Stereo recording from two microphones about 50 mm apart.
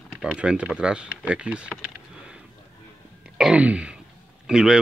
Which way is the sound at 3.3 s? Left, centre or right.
Centre.